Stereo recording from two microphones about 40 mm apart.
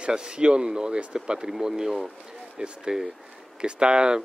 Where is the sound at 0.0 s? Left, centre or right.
Right.